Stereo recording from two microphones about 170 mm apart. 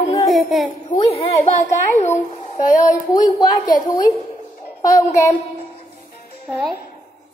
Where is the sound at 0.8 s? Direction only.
30° left (ahead or behind).